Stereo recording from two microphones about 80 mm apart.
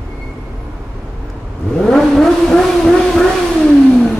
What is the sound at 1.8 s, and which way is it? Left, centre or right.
Vehicle, centre.